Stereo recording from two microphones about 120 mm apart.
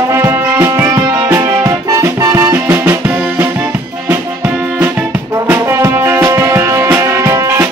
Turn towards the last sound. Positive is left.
turn(degrees=-25)  # may be behind; listen again after turning